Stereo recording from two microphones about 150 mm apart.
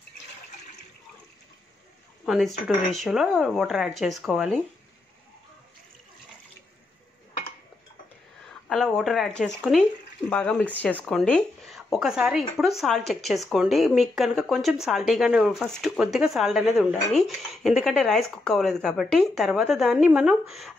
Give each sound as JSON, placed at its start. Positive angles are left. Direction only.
{"t": 2.2, "sound": "speech", "side_deg": 0}
{"t": 8.6, "sound": "a sound", "side_deg": 0}
{"t": 9.0, "sound": "speech", "side_deg": 0}